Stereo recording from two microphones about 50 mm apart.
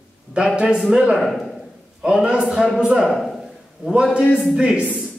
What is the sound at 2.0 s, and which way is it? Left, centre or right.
Speech, centre.